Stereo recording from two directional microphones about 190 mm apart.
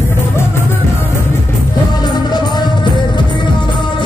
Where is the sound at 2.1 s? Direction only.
20° left (ahead or behind).